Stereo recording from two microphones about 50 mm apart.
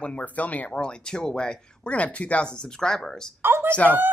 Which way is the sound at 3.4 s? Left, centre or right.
Right.